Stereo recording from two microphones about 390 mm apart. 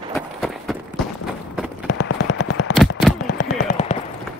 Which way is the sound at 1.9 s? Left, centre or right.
Left.